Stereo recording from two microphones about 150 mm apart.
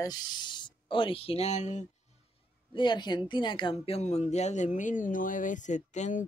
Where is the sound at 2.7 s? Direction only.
30° left (ahead or behind).